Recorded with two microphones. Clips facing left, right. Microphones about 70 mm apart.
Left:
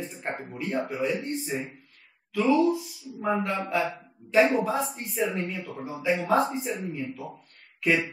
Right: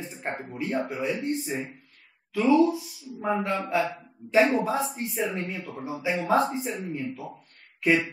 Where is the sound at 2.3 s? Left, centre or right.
Centre.